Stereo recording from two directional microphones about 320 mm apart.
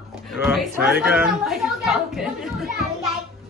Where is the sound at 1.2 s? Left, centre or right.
Centre.